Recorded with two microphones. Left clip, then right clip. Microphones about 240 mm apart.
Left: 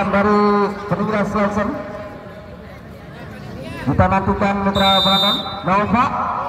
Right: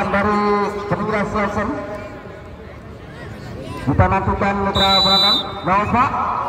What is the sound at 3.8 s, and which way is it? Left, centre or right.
A man's voice, left.